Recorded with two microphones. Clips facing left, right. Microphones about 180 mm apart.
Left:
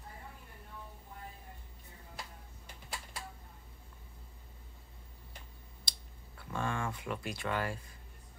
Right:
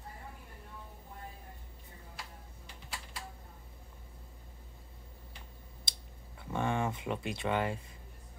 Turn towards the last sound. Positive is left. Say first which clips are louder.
# right 3 dB
turn(degrees=-20)  # may be behind; listen again after turning